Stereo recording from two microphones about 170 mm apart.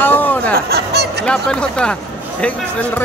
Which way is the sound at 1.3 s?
5° left (ahead or behind).